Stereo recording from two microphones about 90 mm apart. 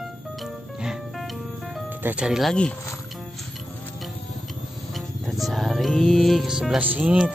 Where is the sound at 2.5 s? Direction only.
10° left (ahead or behind).